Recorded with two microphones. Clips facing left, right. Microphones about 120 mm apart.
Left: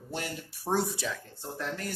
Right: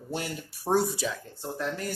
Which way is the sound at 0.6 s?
5° right (ahead or behind).